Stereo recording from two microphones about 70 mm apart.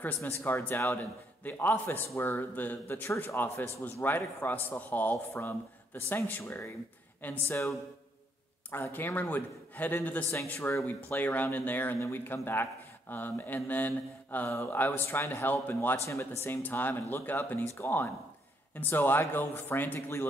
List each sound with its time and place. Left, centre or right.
0.0 s speech: left
0.9 s a man's voice: left
8.7 s a man's voice: left
10.9 s a man's voice: left
16.1 s speech: left
16.6 s a man's voice: left